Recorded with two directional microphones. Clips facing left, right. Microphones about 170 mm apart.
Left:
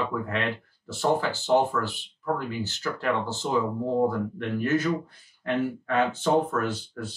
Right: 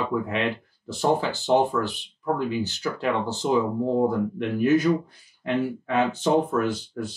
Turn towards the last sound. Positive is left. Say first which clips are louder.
# right 4 dB
turn(degrees=-15)  # may be behind; listen again after turning